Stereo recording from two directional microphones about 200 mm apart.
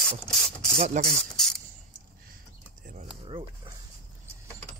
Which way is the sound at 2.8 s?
40° right (ahead or behind).